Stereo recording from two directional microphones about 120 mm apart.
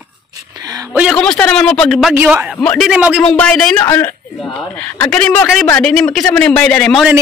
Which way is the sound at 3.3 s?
10° left (ahead or behind).